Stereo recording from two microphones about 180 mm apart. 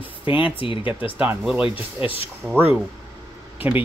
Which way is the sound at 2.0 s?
30° left (ahead or behind).